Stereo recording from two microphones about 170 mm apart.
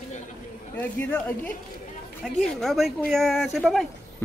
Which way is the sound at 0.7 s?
10° left (ahead or behind).